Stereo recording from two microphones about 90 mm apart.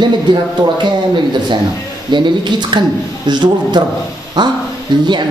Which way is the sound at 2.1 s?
60° right (ahead or behind).